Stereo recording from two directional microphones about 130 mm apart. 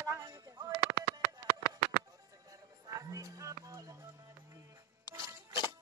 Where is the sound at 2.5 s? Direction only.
25° right (ahead or behind).